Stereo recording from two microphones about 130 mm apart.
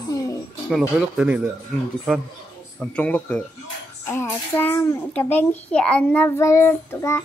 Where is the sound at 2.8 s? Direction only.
10° left (ahead or behind).